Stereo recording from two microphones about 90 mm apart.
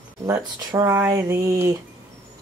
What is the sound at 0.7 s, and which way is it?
Speech, 40° right (ahead or behind).